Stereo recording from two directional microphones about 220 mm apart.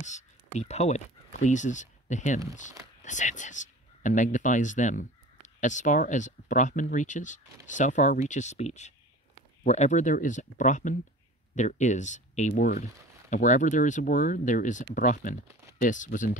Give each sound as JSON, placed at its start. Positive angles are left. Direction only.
{"t": 0.0, "sound": "speech", "side_deg": 30}